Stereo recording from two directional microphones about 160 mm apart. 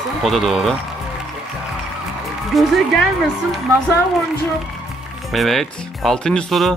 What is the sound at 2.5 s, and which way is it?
Speech, centre (ahead or behind).